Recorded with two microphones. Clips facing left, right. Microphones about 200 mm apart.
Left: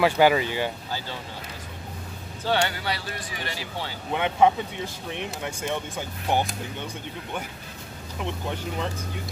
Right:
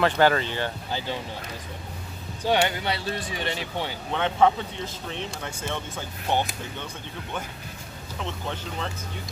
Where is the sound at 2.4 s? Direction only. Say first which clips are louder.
Right 2 dB; 20° right (ahead or behind).